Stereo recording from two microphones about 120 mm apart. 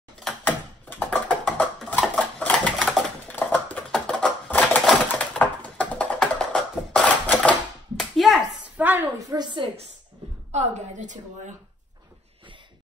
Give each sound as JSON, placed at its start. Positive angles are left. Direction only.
{"t": 0.4, "sound": "a sound", "side_deg": 15}
{"t": 2.8, "sound": "typewriter", "side_deg": -5}
{"t": 3.3, "sound": "typewriter", "side_deg": 10}
{"t": 8.0, "sound": "clapping", "side_deg": 0}
{"t": 8.7, "sound": "a sound", "side_deg": -15}
{"t": 9.3, "sound": "a woman's voice", "side_deg": -40}
{"t": 10.5, "sound": "a woman's voice", "side_deg": -90}